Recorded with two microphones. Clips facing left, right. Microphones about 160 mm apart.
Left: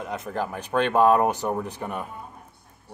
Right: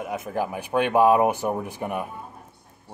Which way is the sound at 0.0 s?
10° right (ahead or behind).